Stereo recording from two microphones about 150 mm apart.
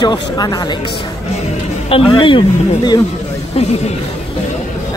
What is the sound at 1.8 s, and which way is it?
Speech, 35° left (ahead or behind).